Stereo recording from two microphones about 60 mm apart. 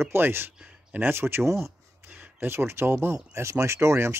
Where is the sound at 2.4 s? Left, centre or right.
Right.